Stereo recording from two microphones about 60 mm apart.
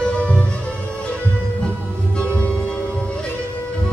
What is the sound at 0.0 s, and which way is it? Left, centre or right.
Music, centre.